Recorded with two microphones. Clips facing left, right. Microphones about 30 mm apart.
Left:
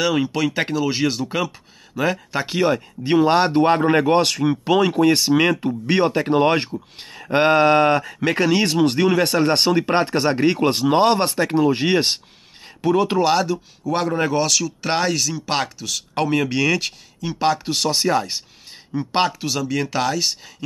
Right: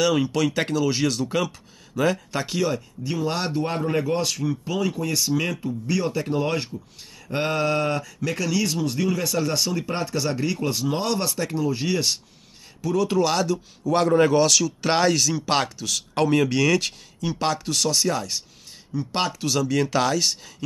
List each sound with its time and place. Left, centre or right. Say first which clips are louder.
0.0 s speech: left 1 dB; centre
2.4 s speech: left 6 dB; left
13.3 s speech: left 4 dB; centre
19.4 s speech: even; centre